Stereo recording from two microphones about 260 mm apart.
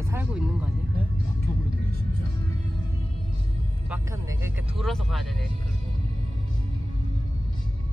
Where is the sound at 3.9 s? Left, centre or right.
Centre.